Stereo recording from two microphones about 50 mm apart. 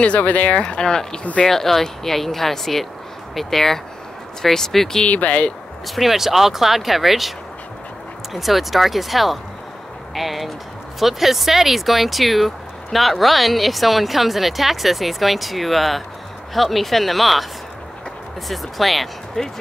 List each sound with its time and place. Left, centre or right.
0.0 s speech: left; by 5.0 s centre
5.0 s speech: left
5.9 s speech: centre
18.5 s speech: centre